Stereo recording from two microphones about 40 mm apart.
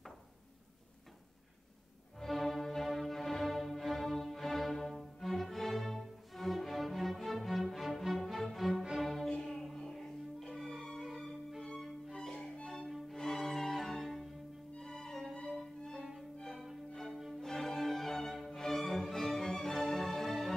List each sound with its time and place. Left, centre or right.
2.1 s music: centre
12.1 s music: left
12.6 s music: centre
16.9 s music: centre